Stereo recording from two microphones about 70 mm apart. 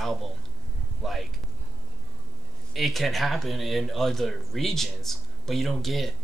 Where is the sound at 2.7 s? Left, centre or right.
Centre.